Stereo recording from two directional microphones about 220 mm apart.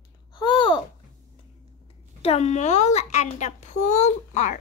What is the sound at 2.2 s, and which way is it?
A child's voice, 30° left (ahead or behind).